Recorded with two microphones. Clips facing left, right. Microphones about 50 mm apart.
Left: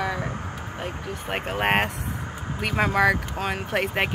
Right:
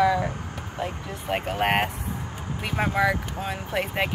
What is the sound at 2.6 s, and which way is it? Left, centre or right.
Speech, left.